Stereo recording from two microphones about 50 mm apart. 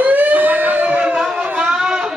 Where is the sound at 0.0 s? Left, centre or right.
Right.